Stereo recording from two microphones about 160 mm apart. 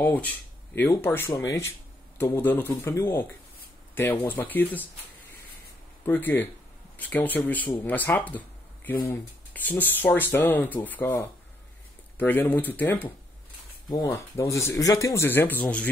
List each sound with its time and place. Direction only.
0.0 s speech: 10° left (ahead or behind)
6.0 s speech: 10° left (ahead or behind)